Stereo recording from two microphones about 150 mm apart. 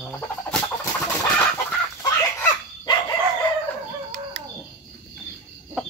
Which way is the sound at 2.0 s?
25° left (ahead or behind).